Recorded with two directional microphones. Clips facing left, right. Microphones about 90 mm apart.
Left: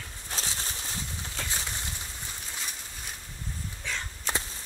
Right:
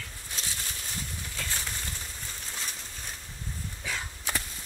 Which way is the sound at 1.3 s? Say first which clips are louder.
Left 1 dB; 20° left (ahead or behind).